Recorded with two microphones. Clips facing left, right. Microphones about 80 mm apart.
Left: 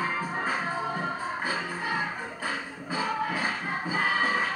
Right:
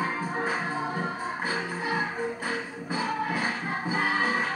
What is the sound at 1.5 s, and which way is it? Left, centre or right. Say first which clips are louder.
Music: right 1 dB; centre.